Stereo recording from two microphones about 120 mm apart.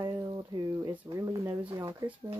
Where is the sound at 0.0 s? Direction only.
30° right (ahead or behind).